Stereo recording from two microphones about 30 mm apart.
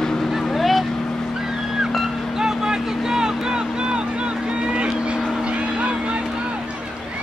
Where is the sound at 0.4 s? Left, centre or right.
Centre.